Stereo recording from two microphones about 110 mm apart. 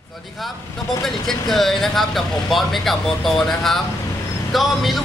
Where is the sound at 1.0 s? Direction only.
Centre (ahead or behind).